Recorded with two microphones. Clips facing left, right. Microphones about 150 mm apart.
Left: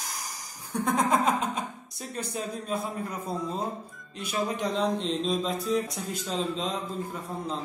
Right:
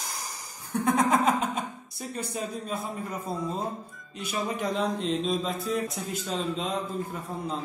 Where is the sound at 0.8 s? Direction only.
55° right (ahead or behind).